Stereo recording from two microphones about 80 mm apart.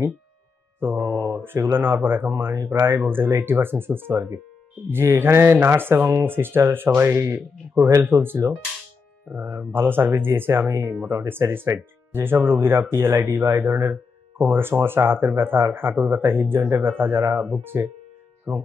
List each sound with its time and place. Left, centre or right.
0.7 s mantra: right
1.4 s speech: right
17.7 s speech: right